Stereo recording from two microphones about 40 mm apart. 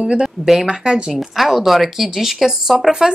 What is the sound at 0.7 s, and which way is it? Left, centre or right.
Speech, right.